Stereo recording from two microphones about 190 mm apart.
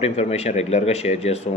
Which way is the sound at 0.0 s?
35° left (ahead or behind).